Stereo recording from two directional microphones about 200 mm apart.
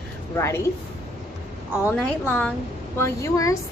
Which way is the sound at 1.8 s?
5° left (ahead or behind).